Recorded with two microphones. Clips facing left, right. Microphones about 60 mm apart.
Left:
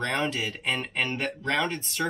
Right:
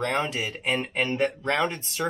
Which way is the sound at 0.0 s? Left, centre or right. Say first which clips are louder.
Right 1 dB; right.